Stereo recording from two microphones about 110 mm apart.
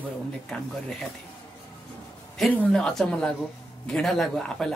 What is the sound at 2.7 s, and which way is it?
Speech, 5° left (ahead or behind).